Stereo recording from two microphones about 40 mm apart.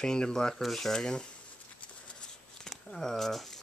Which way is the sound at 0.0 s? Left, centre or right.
Centre.